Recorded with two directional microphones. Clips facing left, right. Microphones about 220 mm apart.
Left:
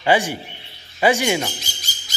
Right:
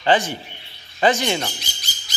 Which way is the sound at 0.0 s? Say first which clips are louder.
Left 1 dB; 10° left (ahead or behind).